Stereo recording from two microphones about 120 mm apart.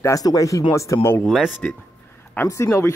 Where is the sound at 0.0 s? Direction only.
30° left (ahead or behind).